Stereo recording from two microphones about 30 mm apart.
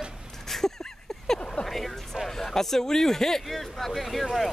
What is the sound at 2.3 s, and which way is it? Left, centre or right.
Speech, centre.